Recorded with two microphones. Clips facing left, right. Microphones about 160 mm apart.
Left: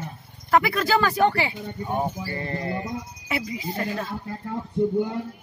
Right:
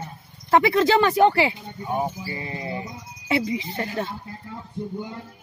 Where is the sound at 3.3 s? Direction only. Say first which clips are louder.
Right 6 dB; 30° right (ahead or behind).